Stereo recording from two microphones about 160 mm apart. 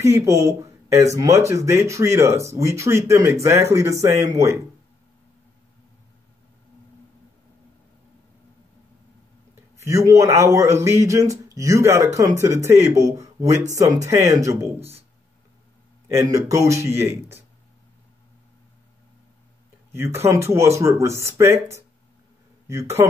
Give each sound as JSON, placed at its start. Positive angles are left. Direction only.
{"t": 0.0, "sound": "speech", "side_deg": -20}
{"t": 9.8, "sound": "speech", "side_deg": -20}
{"t": 16.1, "sound": "speech", "side_deg": -20}
{"t": 19.9, "sound": "speech", "side_deg": -15}